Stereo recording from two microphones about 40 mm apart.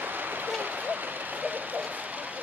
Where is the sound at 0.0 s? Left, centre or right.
Right.